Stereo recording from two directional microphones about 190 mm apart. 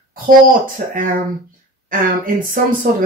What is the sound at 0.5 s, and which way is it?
Speech, 45° right (ahead or behind).